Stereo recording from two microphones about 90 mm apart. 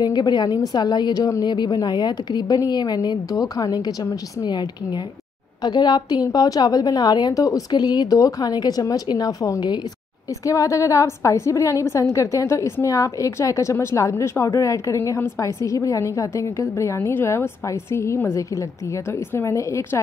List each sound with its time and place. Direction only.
0.0 s a woman's voice: 50° left (ahead or behind)
1.4 s a woman's voice: 55° left (ahead or behind); by 20.0 s 35° left (ahead or behind)